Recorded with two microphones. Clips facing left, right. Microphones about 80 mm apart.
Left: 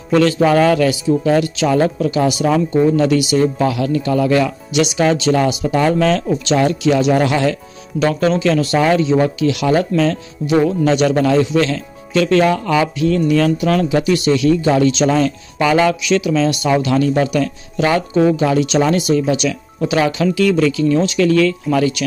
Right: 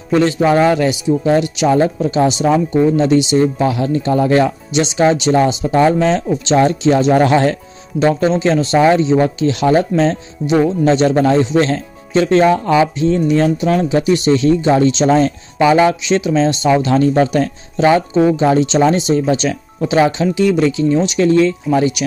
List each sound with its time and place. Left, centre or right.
0.1 s speech: right
8.0 s speech: right